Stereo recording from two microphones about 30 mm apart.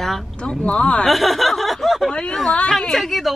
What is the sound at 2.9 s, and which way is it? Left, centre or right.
Speech, centre.